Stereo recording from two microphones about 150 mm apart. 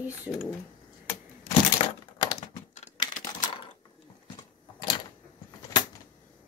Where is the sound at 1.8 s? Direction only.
35° left (ahead or behind).